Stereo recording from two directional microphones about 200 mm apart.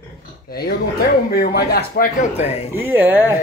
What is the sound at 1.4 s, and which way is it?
Speech, 50° left (ahead or behind).